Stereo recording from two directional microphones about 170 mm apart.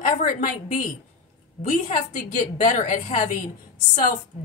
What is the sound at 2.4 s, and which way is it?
Speech, 50° left (ahead or behind).